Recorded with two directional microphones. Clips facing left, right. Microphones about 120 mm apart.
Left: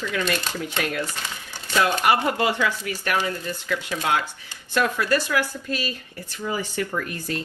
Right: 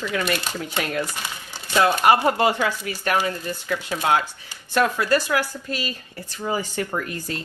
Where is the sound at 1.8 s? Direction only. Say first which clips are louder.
Right 3 dB; 30° right (ahead or behind).